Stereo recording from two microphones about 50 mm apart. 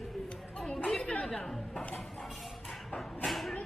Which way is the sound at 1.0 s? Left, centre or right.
Left.